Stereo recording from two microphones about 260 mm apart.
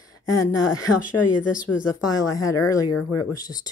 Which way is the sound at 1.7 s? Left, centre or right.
Left.